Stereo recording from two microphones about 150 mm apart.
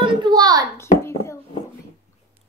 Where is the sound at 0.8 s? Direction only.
20° left (ahead or behind).